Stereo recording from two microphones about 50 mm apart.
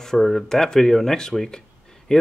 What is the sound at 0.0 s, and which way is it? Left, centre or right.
Speech, centre.